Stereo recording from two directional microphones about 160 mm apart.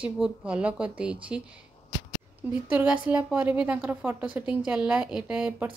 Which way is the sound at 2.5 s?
10° right (ahead or behind).